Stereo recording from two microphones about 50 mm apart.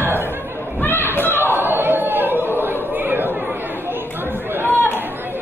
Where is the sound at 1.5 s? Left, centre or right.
Right.